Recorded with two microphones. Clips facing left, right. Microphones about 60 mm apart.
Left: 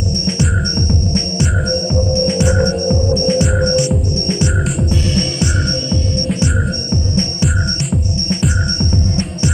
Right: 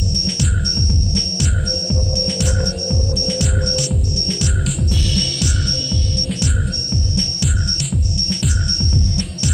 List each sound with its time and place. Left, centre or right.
0.4 s throbbing: left
5.1 s music: left